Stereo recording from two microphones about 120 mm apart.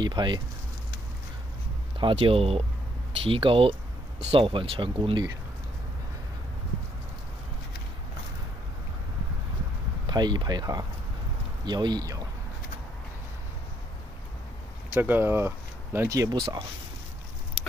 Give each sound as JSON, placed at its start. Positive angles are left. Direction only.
{"t": 0.0, "sound": "speech", "side_deg": -40}
{"t": 2.0, "sound": "speech", "side_deg": -45}
{"t": 10.0, "sound": "speech", "side_deg": -35}
{"t": 15.0, "sound": "speech", "side_deg": -15}